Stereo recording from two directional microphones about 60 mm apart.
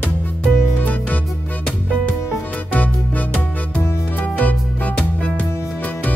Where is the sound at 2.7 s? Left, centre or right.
Left.